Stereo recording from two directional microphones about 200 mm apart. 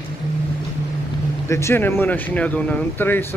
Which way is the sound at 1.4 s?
15° left (ahead or behind).